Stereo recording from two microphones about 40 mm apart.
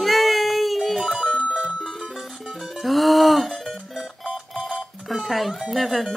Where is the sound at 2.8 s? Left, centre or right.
Centre.